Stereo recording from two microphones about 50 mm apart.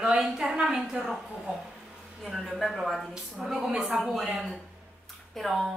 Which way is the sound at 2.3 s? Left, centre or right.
Centre.